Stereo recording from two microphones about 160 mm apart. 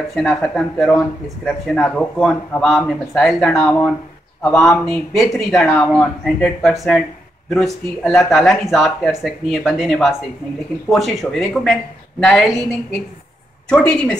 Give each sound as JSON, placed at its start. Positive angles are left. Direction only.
{"t": 0.1, "sound": "speech", "side_deg": 0}
{"t": 13.7, "sound": "a woman's voice", "side_deg": 5}